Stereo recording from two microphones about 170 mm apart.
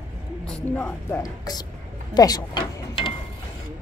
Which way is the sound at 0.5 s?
10° left (ahead or behind).